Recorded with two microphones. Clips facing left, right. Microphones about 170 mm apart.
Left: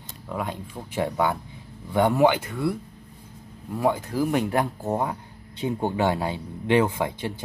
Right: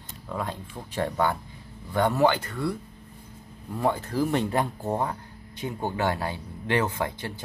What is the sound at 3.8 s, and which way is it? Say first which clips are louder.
Speech: left 2 dB; 15° left (ahead or behind).